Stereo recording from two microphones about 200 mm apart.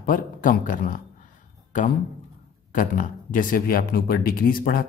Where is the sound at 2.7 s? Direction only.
40° left (ahead or behind).